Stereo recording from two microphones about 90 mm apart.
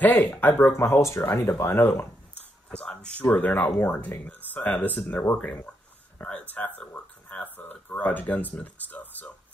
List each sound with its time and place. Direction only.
0.0 s speech: 20° left (ahead or behind)
2.7 s speech: 10° left (ahead or behind)
6.5 s a sound: 15° left (ahead or behind)